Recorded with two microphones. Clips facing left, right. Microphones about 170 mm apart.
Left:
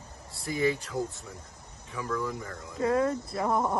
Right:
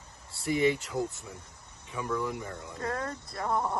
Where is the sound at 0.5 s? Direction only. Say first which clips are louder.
Right 1 dB; 20° right (ahead or behind).